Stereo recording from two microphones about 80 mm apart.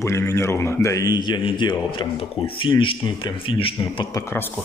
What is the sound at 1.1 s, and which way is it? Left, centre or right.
A man's voice, left.